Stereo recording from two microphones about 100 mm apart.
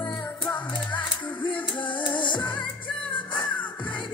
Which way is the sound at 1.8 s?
55° left (ahead or behind).